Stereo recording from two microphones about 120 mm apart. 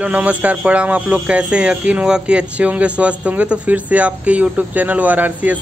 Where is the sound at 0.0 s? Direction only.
10° right (ahead or behind).